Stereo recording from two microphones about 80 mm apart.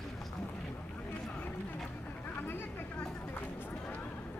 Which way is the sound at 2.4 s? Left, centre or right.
Left.